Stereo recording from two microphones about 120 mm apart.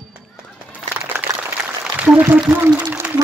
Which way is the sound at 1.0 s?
15° right (ahead or behind).